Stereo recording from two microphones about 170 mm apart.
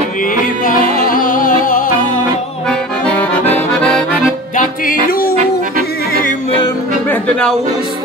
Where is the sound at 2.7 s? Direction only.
5° left (ahead or behind).